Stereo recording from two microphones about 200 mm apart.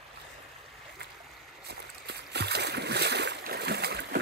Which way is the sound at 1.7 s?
55° right (ahead or behind).